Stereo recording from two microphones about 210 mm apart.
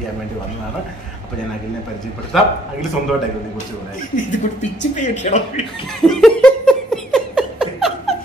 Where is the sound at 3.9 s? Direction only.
40° left (ahead or behind).